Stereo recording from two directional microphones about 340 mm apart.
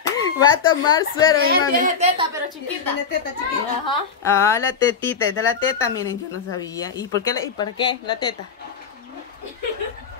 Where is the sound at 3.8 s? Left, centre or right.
Centre.